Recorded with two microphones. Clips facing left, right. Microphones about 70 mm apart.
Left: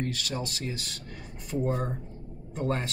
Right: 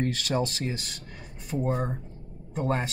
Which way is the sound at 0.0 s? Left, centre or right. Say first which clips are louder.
Right 5 dB; right.